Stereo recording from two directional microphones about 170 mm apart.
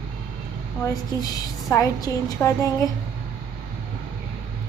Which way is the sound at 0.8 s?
20° left (ahead or behind).